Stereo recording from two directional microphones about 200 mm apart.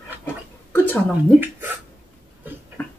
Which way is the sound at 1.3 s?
10° right (ahead or behind).